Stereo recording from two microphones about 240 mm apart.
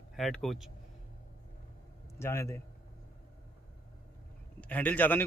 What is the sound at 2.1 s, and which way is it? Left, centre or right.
Speech, centre.